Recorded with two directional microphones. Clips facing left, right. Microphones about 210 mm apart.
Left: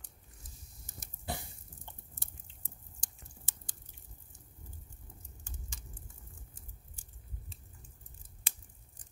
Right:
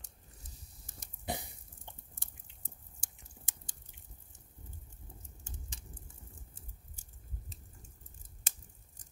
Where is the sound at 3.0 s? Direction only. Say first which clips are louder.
Even; 15° right (ahead or behind).